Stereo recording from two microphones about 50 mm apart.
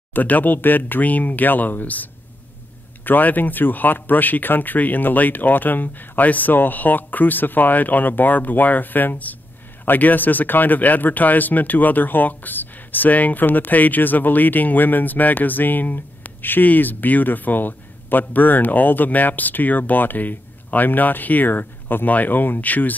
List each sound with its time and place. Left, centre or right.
0.1 s speech: left
3.1 s speech: left